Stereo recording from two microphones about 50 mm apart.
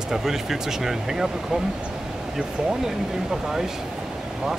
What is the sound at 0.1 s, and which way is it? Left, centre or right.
Speech, centre.